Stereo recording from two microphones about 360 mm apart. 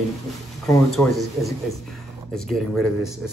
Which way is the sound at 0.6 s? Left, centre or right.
Centre.